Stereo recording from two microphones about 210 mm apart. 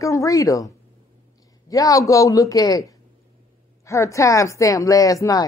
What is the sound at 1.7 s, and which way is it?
A man's voice, 15° left (ahead or behind).